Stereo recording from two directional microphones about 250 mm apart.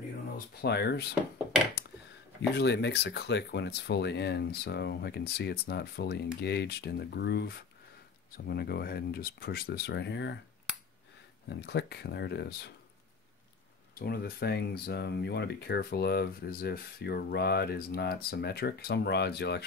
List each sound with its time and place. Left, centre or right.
0.6 s speech: left
2.5 s speech: left
11.4 s speech: left
13.9 s speech: left